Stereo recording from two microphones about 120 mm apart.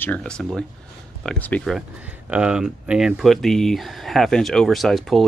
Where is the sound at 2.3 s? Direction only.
10° right (ahead or behind).